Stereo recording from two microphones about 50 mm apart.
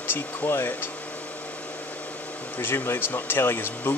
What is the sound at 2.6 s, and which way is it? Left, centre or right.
Speech, left.